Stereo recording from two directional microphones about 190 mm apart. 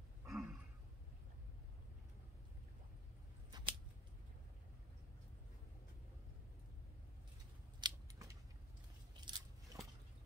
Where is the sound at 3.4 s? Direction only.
25° right (ahead or behind).